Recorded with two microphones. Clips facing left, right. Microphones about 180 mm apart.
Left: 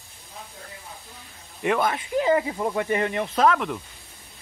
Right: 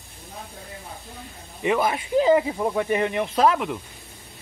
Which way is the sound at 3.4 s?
5° right (ahead or behind).